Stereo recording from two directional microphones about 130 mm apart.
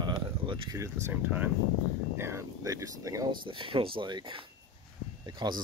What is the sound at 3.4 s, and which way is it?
Speech, 40° right (ahead or behind).